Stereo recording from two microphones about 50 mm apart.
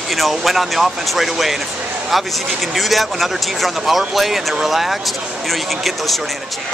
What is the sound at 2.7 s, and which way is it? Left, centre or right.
Speech, centre.